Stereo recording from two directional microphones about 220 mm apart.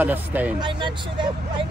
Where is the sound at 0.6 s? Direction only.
20° right (ahead or behind).